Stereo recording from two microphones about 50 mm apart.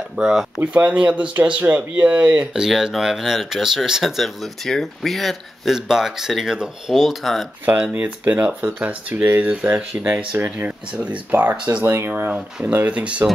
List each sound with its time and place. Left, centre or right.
0.2 s speech: centre
0.6 s speech: right
2.5 s speech: centre
4.2 s speech: centre
5.9 s speech: centre
6.9 s speech: centre
7.9 s speech: right